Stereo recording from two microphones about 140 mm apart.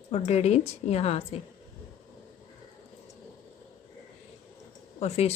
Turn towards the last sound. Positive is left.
turn(degrees=50)  # may be behind; listen again after turning